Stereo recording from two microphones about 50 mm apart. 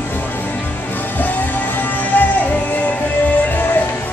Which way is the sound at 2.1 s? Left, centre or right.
Left.